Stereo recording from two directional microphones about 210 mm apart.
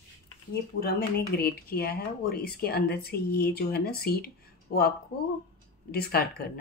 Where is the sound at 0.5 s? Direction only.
50° left (ahead or behind).